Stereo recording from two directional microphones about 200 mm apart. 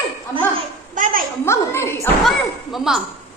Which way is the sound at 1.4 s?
15° left (ahead or behind).